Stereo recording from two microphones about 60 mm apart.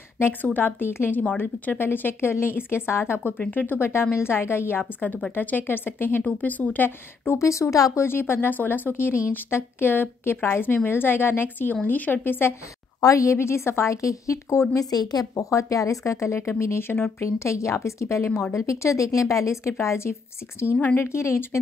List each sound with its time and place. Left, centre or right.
0.2 s speech: left
3.5 s speech: left
7.2 s a woman's voice: left
8.0 s speech: left
13.0 s a woman's voice: left
16.3 s a woman's voice: left
20.7 s speech: left
21.0 s a woman's voice: left